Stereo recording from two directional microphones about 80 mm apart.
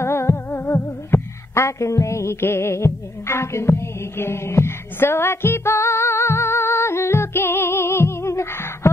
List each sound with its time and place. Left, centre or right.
0.0 s music: left